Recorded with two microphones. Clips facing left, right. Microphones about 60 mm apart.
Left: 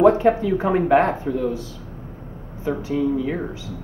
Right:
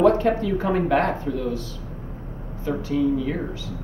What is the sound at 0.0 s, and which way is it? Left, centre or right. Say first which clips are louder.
Speech: left 3 dB; centre.